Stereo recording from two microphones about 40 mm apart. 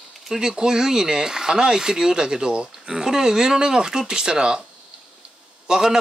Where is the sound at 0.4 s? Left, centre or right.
Centre.